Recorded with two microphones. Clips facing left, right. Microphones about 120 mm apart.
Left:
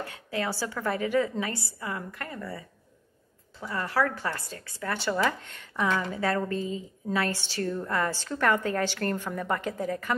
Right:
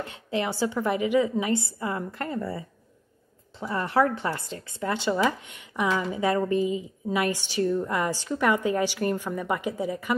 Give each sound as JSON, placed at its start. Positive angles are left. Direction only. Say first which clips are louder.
{"t": 0.0, "sound": "a woman's voice", "louder": "right 3 dB", "side_deg": -25}